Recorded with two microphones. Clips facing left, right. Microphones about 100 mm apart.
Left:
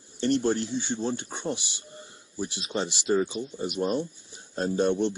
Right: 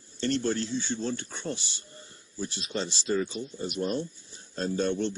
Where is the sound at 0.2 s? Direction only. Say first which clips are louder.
Left 3 dB; 15° left (ahead or behind).